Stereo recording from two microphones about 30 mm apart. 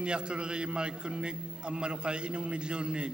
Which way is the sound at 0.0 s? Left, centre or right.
Right.